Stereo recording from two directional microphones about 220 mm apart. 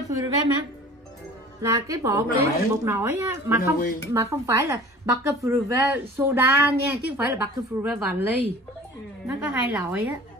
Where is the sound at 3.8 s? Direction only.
40° left (ahead or behind).